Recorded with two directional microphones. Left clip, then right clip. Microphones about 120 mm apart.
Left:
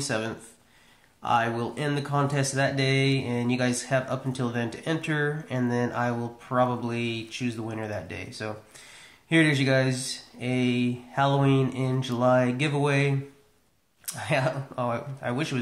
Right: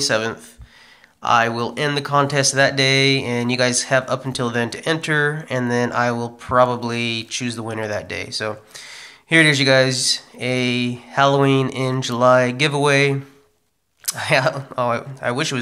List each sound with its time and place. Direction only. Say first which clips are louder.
1.2 s speech: right 8 dB; 15° right (ahead or behind)